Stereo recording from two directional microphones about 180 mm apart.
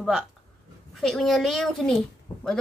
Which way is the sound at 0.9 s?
Centre (ahead or behind).